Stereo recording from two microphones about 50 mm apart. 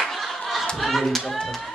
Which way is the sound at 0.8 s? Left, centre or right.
Centre.